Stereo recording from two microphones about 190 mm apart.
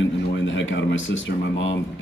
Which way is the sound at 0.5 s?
75° left (ahead or behind).